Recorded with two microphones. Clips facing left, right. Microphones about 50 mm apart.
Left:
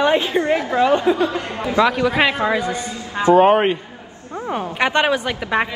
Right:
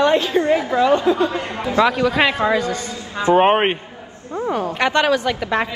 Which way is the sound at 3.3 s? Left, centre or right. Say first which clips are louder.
Left 2 dB; right.